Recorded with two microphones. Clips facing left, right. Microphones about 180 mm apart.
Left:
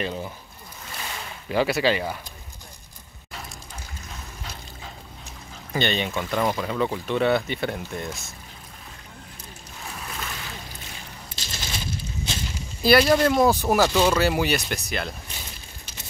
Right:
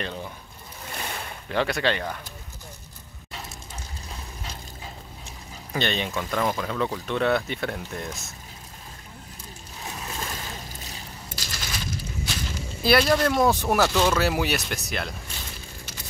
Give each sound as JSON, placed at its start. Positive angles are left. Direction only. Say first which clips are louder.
{"t": 0.0, "sound": "speech", "louder": "left 4 dB", "side_deg": 5}
{"t": 1.5, "sound": "speech", "louder": "left 3 dB", "side_deg": 5}
{"t": 5.7, "sound": "speech", "louder": "left 2 dB", "side_deg": 0}
{"t": 9.8, "sound": "a sound", "louder": "right 1 dB", "side_deg": -25}
{"t": 10.3, "sound": "a sound", "louder": "right 1 dB", "side_deg": -40}
{"t": 11.3, "sound": "coin", "louder": "left 1 dB", "side_deg": 25}
{"t": 12.8, "sound": "speech", "louder": "left 3 dB", "side_deg": 0}